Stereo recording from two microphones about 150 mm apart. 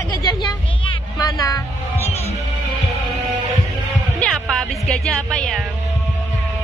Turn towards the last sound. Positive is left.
turn(degrees=5)  # may be behind; listen again after turning